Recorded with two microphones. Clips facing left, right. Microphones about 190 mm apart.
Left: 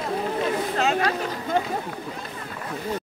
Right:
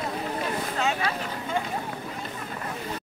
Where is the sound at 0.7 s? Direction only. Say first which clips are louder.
Left 4 dB; 60° left (ahead or behind).